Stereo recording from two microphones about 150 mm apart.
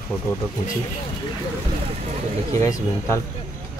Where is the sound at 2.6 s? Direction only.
20° left (ahead or behind).